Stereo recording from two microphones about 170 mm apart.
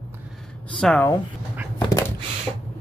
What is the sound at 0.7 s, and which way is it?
Speech, 5° left (ahead or behind).